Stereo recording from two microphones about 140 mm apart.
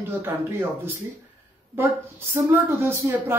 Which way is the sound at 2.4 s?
15° right (ahead or behind).